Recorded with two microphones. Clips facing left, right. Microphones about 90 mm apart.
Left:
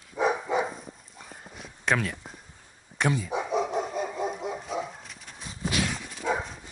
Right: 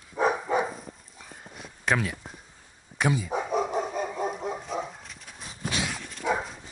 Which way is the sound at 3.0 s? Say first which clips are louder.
Right 1 dB; 5° right (ahead or behind).